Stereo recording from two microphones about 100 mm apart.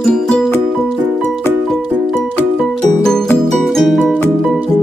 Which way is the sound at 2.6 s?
5° left (ahead or behind).